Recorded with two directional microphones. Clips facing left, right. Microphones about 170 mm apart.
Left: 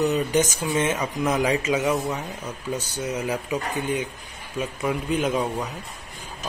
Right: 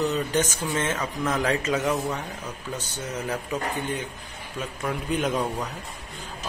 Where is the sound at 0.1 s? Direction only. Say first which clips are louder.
Left 3 dB; 10° left (ahead or behind).